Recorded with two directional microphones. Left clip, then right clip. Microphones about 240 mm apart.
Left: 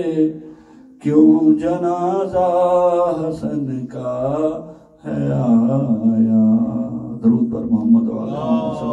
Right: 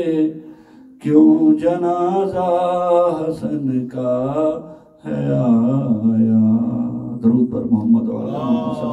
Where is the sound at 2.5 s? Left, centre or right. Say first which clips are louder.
Left 2 dB; right.